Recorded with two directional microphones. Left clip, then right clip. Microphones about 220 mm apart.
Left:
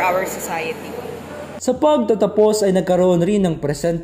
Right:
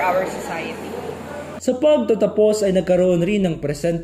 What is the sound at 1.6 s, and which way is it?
Speech, 15° left (ahead or behind).